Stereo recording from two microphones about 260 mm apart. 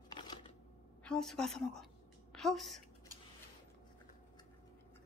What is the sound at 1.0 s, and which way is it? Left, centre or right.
A woman's voice, centre.